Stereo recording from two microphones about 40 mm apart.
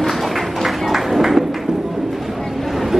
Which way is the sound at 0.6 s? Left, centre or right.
Centre.